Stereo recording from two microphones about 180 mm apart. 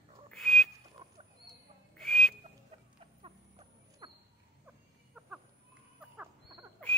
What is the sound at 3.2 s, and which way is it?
Rodents, 30° right (ahead or behind).